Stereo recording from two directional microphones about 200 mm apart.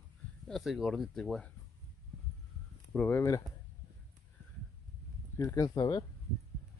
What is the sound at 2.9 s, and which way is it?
Speech, 5° left (ahead or behind).